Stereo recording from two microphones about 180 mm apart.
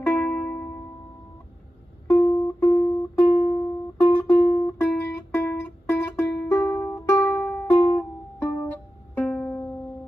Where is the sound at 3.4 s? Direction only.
35° left (ahead or behind).